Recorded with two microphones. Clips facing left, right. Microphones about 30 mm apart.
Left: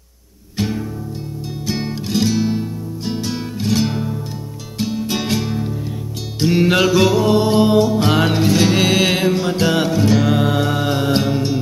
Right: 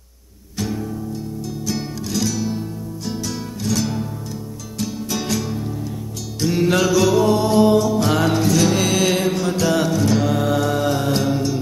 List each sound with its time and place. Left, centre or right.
0.6 s music: left